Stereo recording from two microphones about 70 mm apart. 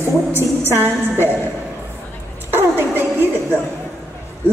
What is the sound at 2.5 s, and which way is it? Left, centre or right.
Music, right.